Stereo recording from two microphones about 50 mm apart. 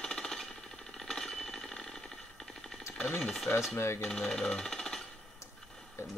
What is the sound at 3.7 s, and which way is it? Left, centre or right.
Coin, left.